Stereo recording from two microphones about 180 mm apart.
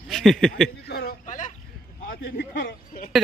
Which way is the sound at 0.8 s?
60° left (ahead or behind).